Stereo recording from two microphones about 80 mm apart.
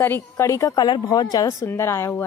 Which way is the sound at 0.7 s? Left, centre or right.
Left.